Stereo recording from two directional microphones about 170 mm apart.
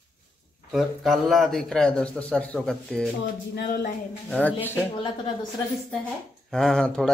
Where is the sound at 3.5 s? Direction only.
60° left (ahead or behind).